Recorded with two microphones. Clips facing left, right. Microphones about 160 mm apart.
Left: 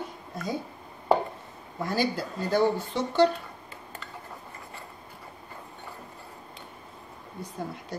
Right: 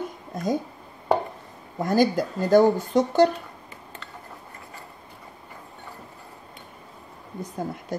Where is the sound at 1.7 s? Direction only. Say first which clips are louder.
Right 7 dB; 45° right (ahead or behind).